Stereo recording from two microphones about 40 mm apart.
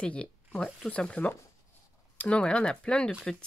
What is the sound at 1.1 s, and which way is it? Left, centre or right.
Speech, left.